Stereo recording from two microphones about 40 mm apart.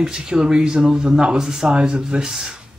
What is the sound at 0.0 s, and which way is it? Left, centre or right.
Speech, centre.